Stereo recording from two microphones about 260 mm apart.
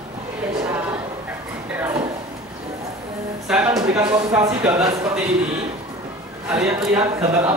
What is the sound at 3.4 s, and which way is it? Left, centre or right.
Speech, centre.